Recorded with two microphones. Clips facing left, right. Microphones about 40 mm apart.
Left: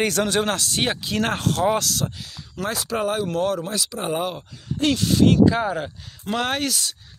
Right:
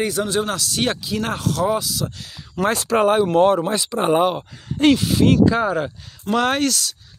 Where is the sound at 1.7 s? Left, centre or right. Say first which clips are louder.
Even; left.